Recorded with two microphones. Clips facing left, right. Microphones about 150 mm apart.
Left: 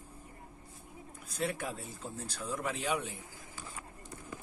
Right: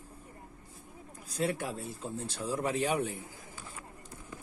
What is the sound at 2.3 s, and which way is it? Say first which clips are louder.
Speech: right 4 dB; 30° right (ahead or behind).